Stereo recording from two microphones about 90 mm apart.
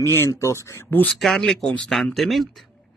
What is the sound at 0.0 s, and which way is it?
Speech, 30° left (ahead or behind).